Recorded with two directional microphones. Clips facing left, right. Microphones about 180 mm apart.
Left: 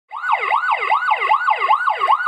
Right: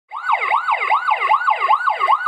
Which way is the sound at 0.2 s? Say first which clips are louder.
Even; 5° right (ahead or behind).